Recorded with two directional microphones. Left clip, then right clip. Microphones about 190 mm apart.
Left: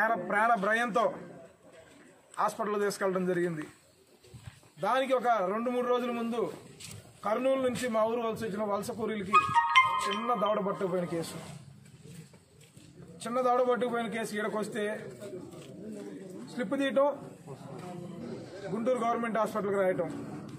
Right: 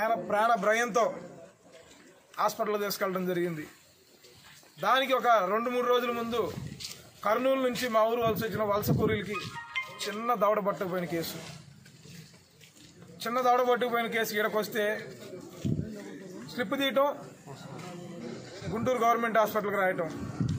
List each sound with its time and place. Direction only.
0.3 s a man's voice: 10° right (ahead or behind)
2.3 s a man's voice: 20° right (ahead or behind)
4.7 s a man's voice: 5° right (ahead or behind)
9.3 s music: 50° left (ahead or behind)
10.2 s a man's voice: 10° right (ahead or behind)
13.2 s a man's voice: 10° right (ahead or behind)
16.5 s a man's voice: 10° right (ahead or behind)
18.9 s a man's voice: 10° right (ahead or behind)